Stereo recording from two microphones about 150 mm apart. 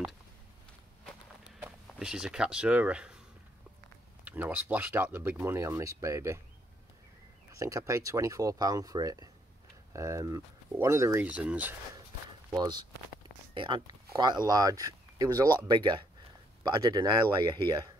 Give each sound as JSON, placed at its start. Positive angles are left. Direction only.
{"t": 1.6, "sound": "speech", "side_deg": -5}
{"t": 4.2, "sound": "speech", "side_deg": -10}
{"t": 7.5, "sound": "speech", "side_deg": -20}
{"t": 11.2, "sound": "speech", "side_deg": -10}
{"t": 12.5, "sound": "speech", "side_deg": -30}